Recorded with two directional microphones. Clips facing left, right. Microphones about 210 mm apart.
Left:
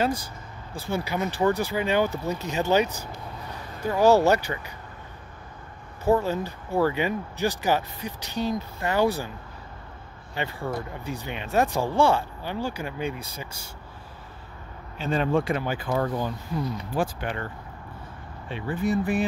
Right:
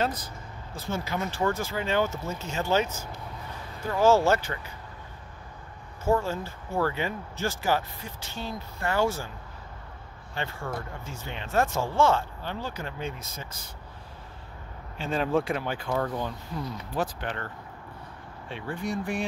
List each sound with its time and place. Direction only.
0.8 s speech: 15° left (ahead or behind)
6.0 s speech: 15° left (ahead or behind)
10.3 s speech: 15° left (ahead or behind)
15.0 s speech: centre (ahead or behind)
18.5 s speech: 5° left (ahead or behind)